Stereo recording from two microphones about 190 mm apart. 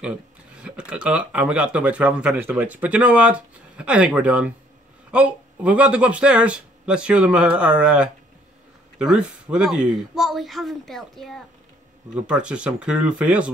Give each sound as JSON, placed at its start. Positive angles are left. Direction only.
{"t": 0.6, "sound": "speech", "side_deg": -5}